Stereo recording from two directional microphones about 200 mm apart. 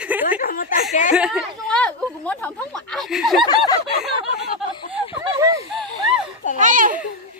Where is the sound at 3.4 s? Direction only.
20° left (ahead or behind).